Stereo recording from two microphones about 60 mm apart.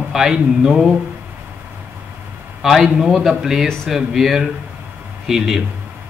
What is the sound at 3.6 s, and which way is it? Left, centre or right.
Speech, centre.